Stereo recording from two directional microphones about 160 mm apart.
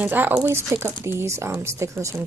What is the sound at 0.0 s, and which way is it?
Speech, 10° right (ahead or behind).